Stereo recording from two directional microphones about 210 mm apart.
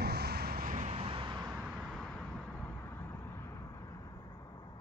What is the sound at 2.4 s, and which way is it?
Vehicle, 10° left (ahead or behind).